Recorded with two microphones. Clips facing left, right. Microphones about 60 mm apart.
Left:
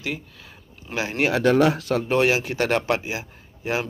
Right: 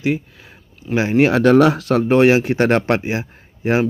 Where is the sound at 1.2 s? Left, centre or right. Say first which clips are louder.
Right 4 dB; right.